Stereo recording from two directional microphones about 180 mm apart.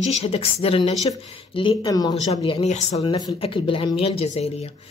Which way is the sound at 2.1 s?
35° left (ahead or behind).